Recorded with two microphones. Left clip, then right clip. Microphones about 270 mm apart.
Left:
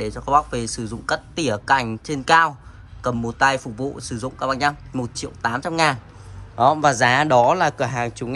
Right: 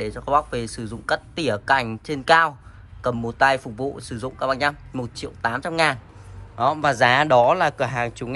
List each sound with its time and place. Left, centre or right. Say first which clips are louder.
0.0 s speech: left 2 dB; centre